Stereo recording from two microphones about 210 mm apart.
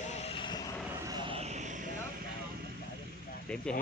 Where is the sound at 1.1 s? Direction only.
20° right (ahead or behind).